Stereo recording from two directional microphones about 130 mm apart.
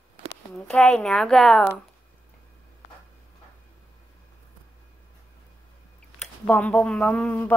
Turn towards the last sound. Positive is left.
turn(degrees=15)  # may be behind; listen again after turning